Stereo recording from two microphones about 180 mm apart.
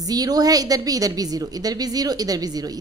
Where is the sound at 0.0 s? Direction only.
20° right (ahead or behind).